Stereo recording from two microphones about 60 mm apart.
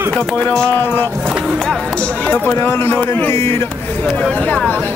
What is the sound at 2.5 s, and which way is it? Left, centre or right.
Speech, left.